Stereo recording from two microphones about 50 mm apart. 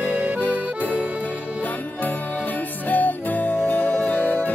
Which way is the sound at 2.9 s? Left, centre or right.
Left.